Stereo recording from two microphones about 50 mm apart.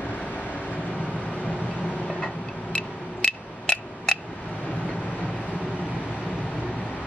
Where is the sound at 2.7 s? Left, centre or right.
Left.